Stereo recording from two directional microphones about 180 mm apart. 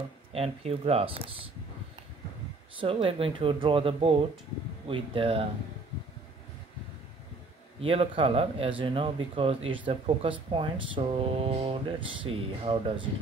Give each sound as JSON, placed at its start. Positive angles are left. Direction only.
{"t": 0.3, "sound": "speech", "side_deg": -35}
{"t": 2.8, "sound": "speech", "side_deg": -30}
{"t": 7.8, "sound": "speech", "side_deg": -30}